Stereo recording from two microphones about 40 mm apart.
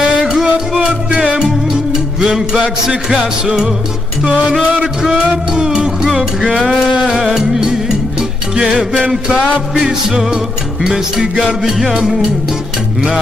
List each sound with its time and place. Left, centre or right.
0.0 s music: centre
5.0 s music: centre
6.5 s music: centre
7.1 s music: centre
9.8 s music: centre